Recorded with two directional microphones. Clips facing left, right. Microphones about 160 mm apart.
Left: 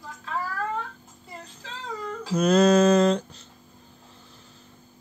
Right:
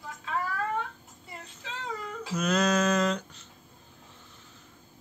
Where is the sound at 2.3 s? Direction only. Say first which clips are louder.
Left 8 dB; 30° left (ahead or behind).